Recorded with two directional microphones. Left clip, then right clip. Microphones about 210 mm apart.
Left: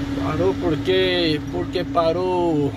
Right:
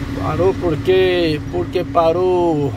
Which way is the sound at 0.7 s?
15° right (ahead or behind).